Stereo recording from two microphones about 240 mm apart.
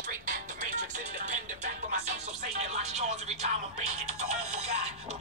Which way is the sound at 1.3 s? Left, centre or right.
Right.